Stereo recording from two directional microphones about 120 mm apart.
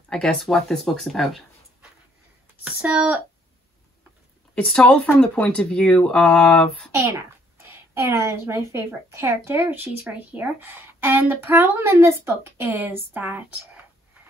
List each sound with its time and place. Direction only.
0.1 s speech: 5° left (ahead or behind)
2.6 s speech: 10° right (ahead or behind)
4.6 s speech: 10° left (ahead or behind)
6.9 s a woman's voice: 20° right (ahead or behind)